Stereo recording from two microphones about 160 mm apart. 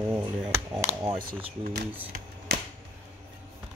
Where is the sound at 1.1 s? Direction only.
65° right (ahead or behind).